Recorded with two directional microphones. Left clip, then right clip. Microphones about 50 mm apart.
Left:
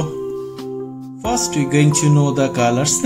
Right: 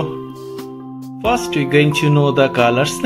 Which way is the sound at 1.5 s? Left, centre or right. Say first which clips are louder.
Right 3 dB; right.